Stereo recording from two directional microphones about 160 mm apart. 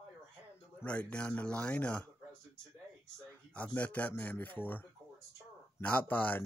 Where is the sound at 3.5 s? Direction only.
10° left (ahead or behind).